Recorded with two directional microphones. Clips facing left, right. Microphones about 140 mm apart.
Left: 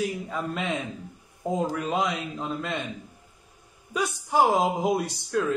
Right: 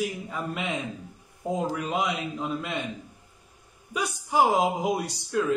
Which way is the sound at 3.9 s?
15° right (ahead or behind).